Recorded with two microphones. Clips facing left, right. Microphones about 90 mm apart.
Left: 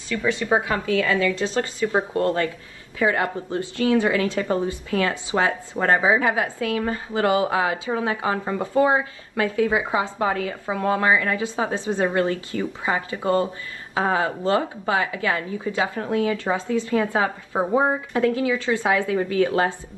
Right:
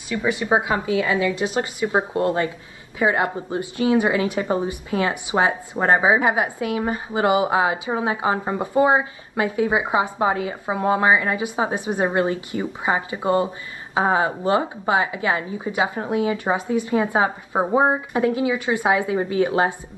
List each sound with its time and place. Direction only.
0.1 s a woman's voice: 20° right (ahead or behind)